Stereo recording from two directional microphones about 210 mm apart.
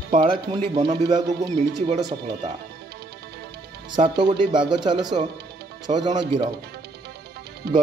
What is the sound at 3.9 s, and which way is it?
Speech, 20° right (ahead or behind).